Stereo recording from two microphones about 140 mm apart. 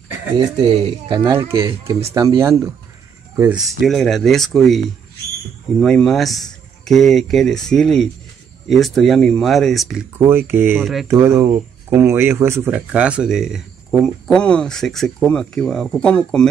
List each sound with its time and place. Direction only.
0.5 s speech: 35° right (ahead or behind)
1.5 s speech: 20° right (ahead or behind)
3.5 s speech: centre (ahead or behind)
10.1 s speech: 15° right (ahead or behind); by 16.4 s 5° left (ahead or behind)